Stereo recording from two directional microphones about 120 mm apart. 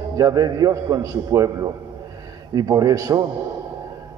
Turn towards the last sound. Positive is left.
turn(degrees=-30)  # may be behind; listen again after turning